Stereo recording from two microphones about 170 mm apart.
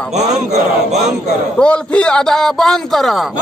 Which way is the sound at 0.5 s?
40° right (ahead or behind).